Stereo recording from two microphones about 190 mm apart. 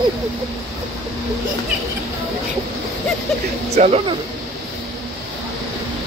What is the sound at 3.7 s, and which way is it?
Speech, 40° right (ahead or behind).